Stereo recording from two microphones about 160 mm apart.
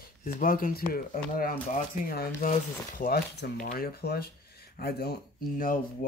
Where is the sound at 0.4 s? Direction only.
60° left (ahead or behind); by 5.1 s 75° left (ahead or behind).